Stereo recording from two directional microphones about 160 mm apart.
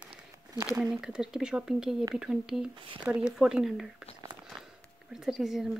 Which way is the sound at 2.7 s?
30° right (ahead or behind).